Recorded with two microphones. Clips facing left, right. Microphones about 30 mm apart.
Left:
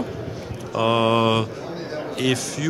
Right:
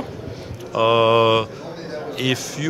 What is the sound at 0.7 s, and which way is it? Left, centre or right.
Speech, centre.